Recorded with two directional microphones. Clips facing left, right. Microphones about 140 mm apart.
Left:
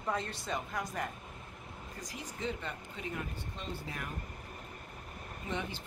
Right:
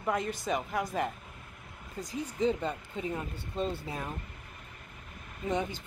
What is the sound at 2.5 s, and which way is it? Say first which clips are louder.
Speech: right 6 dB; 40° right (ahead or behind).